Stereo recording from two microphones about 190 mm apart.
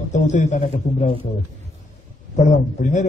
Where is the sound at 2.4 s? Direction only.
40° left (ahead or behind).